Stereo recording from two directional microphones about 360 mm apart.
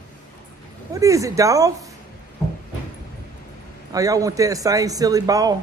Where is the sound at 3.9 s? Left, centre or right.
Centre.